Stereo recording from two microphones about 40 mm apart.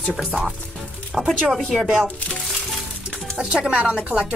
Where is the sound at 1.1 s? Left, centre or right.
Centre.